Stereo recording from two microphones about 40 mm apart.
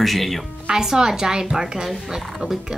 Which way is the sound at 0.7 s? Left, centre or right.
Centre.